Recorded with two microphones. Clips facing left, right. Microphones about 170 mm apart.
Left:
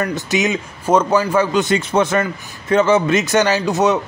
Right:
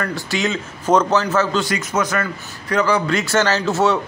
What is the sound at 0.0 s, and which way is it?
A man's voice, 20° left (ahead or behind).